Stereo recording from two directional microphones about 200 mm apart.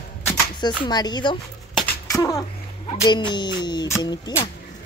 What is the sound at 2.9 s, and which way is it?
Speech, 25° left (ahead or behind).